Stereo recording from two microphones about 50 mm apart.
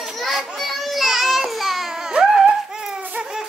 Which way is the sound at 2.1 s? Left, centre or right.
Right.